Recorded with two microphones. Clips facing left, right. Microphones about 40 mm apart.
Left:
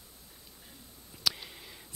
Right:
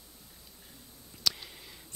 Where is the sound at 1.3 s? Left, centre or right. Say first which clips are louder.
Even; centre.